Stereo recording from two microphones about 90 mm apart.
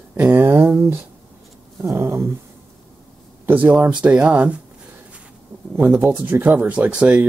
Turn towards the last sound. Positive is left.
turn(degrees=-15)  # may be behind; listen again after turning